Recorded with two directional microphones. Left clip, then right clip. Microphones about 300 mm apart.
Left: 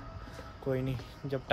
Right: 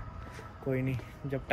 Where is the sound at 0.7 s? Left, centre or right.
Centre.